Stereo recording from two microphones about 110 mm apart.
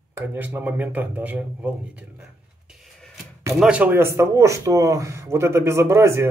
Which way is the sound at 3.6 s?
10° right (ahead or behind).